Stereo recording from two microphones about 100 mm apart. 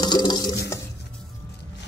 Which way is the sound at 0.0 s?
45° left (ahead or behind).